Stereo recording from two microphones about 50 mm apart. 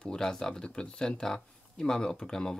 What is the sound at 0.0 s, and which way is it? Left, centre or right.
Speech, centre.